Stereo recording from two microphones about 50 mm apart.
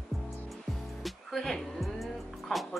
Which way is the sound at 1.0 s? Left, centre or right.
Centre.